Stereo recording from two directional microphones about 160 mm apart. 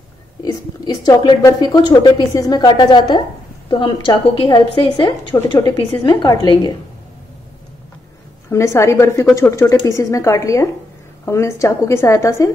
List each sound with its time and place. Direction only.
0.4 s a woman's voice: 25° left (ahead or behind)
8.5 s a woman's voice: 20° left (ahead or behind)